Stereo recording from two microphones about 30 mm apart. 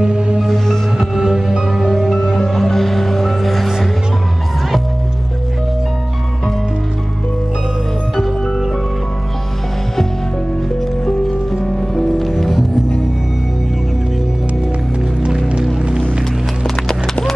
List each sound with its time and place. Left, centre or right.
0.9 s music: centre
1.8 s music: centre
11.1 s music: centre
16.8 s clip-clop: centre